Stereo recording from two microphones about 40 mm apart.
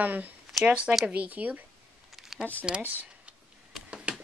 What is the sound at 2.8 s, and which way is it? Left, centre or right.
Speech, right.